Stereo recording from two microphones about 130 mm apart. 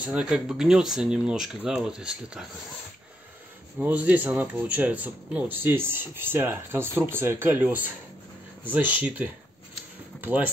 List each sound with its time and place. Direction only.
0.0 s speech: 10° right (ahead or behind)
3.8 s speech: 10° right (ahead or behind)